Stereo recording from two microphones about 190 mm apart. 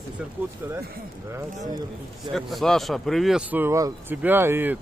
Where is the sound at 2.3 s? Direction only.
Centre (ahead or behind).